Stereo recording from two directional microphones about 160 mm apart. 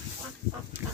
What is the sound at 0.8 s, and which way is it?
Livestock, 15° right (ahead or behind).